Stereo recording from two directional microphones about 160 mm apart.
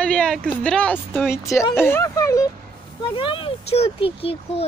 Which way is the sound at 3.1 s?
35° left (ahead or behind).